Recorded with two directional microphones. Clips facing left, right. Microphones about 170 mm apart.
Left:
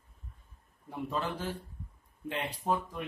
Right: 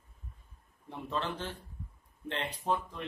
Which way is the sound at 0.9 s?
5° left (ahead or behind).